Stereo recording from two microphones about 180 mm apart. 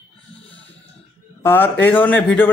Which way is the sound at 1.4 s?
15° left (ahead or behind).